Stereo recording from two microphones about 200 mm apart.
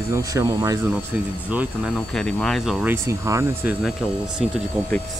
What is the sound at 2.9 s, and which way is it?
Speech, 15° right (ahead or behind).